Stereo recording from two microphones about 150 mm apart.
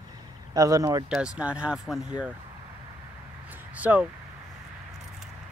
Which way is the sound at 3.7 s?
10° right (ahead or behind).